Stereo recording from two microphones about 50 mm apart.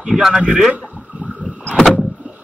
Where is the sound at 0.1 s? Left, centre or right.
Left.